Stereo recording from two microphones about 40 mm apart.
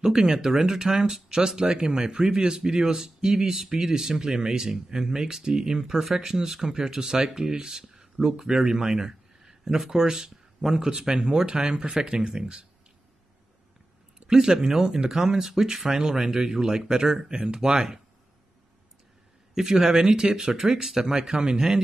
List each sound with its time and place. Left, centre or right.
0.0 s speech: centre
14.2 s speech: centre
19.5 s speech: centre